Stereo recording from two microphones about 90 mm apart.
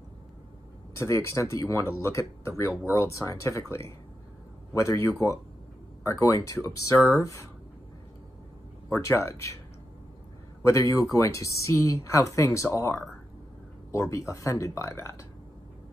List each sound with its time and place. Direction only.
0.9 s speech: 35° left (ahead or behind)
8.9 s speech: 30° left (ahead or behind)
10.6 s speech: 35° left (ahead or behind)